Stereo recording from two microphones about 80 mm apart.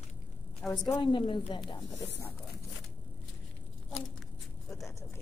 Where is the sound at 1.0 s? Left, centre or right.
Left.